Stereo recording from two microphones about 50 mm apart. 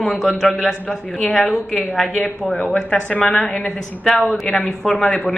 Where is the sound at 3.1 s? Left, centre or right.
Left.